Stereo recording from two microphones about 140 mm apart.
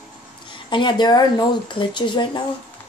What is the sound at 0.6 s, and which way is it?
Speech, 35° left (ahead or behind).